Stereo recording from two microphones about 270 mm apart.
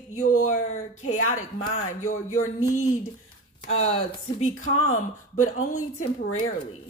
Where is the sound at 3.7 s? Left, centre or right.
Left.